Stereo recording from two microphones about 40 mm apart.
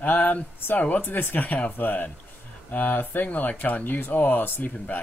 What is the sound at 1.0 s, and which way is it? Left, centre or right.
Speech, left.